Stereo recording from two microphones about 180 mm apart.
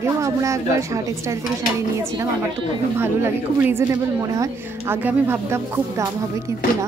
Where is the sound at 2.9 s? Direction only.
15° right (ahead or behind).